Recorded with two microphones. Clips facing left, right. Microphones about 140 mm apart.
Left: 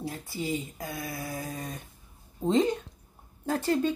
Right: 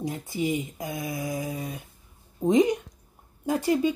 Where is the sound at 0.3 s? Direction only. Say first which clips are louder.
Right 5 dB; 15° right (ahead or behind).